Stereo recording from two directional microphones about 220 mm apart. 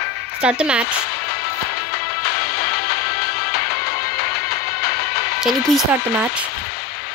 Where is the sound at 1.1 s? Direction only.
45° left (ahead or behind).